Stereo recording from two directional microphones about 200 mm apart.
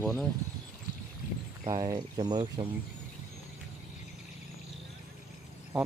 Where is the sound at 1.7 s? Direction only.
20° right (ahead or behind).